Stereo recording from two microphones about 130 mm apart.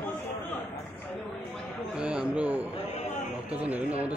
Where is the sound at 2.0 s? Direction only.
10° right (ahead or behind).